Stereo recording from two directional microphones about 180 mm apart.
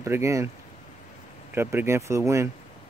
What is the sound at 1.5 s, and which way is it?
Speech, 15° right (ahead or behind).